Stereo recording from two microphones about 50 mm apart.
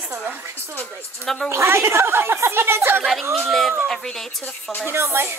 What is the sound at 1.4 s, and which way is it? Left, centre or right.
Speech, right.